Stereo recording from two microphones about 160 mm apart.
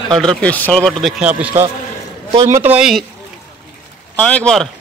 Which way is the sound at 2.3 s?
40° right (ahead or behind).